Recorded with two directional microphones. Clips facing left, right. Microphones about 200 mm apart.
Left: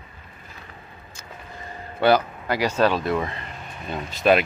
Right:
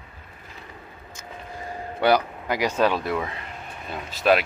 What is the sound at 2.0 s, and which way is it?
A man's voice, 15° right (ahead or behind).